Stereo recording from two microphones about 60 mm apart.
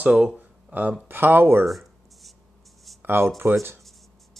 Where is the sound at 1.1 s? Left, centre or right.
Right.